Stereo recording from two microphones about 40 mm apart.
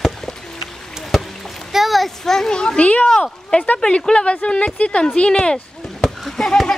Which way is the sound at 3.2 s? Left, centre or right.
Left.